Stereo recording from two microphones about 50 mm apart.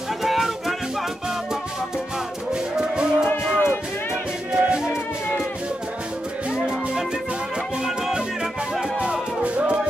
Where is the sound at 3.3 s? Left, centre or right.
Left.